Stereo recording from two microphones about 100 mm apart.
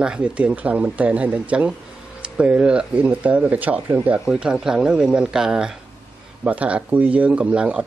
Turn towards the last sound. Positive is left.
turn(degrees=-10)  # may be behind; listen again after turning